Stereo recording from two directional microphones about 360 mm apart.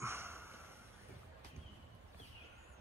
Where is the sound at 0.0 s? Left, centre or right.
Centre.